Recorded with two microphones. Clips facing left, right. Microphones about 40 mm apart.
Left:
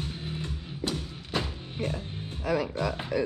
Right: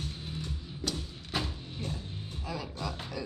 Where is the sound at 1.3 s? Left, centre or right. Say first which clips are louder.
Left 3 dB; centre.